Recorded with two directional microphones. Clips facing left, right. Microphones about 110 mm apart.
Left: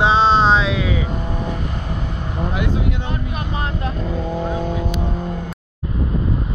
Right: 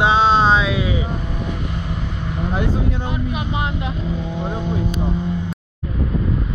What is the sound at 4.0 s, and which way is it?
Speech, 50° left (ahead or behind).